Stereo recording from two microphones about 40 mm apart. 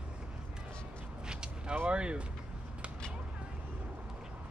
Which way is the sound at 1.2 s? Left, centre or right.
Right.